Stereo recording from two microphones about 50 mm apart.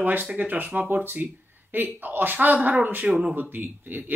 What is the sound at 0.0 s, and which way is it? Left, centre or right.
Speech, right.